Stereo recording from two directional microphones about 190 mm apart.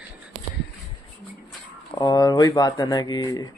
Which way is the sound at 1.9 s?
20° left (ahead or behind).